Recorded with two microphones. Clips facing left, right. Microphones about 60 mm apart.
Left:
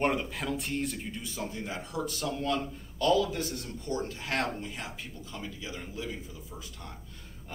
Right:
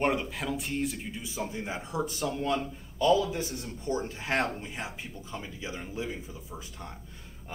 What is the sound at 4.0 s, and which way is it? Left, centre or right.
Speech, right.